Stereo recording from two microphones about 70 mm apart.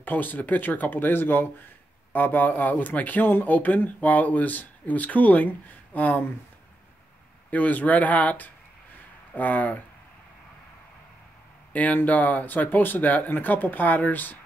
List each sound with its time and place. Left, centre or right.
0.0 s speech: left
7.5 s speech: left
11.7 s speech: left